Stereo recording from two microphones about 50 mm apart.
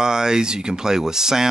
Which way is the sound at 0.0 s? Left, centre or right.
Centre.